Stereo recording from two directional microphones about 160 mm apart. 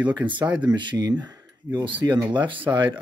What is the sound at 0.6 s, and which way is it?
Speech, 30° right (ahead or behind).